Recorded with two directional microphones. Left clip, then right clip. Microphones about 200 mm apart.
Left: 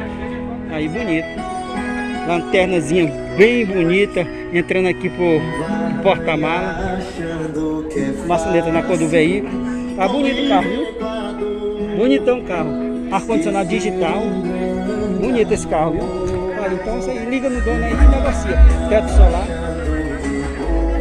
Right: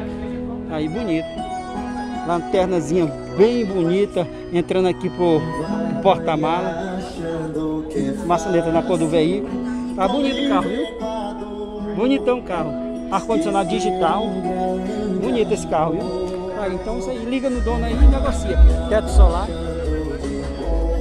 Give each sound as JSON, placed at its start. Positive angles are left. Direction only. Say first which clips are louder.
{"t": 2.2, "sound": "speech", "louder": "left 3 dB", "side_deg": -10}
{"t": 2.7, "sound": "speech", "louder": "left 3 dB", "side_deg": 0}
{"t": 8.3, "sound": "speech", "louder": "left 2 dB", "side_deg": -5}
{"t": 12.0, "sound": "speech", "louder": "left 3 dB", "side_deg": 5}
{"t": 15.2, "sound": "speech", "louder": "left 3 dB", "side_deg": 5}
{"t": 18.5, "sound": "speech", "louder": "left 4 dB", "side_deg": -40}